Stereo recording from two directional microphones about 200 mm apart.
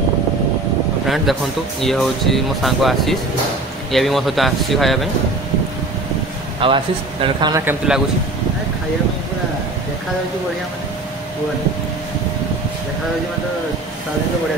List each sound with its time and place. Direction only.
1.0 s speech: centre (ahead or behind)
6.6 s speech: 25° right (ahead or behind)
7.6 s speech: 5° right (ahead or behind)